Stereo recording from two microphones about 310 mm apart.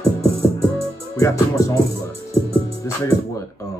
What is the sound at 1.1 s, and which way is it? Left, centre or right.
Speech, centre.